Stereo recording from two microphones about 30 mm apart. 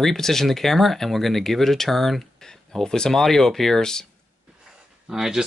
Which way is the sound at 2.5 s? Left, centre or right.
Left.